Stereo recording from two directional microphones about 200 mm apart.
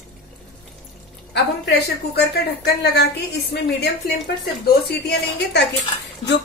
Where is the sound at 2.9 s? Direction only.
55° left (ahead or behind).